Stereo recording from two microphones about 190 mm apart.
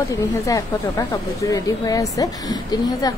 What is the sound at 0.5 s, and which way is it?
Speech, 15° left (ahead or behind).